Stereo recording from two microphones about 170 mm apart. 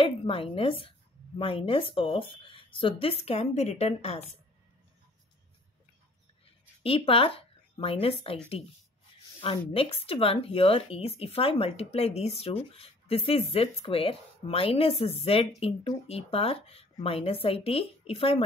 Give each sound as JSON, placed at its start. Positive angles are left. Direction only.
{"t": 0.0, "sound": "speech", "side_deg": 30}
{"t": 6.8, "sound": "speech", "side_deg": 30}
{"t": 9.4, "sound": "speech", "side_deg": 35}